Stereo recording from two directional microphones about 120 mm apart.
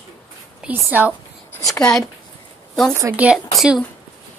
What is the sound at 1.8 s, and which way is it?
Speech, 10° left (ahead or behind).